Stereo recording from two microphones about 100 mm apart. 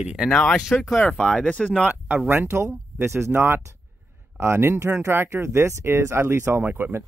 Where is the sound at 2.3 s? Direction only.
25° right (ahead or behind).